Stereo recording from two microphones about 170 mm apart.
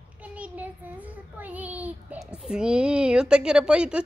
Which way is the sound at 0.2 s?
10° right (ahead or behind).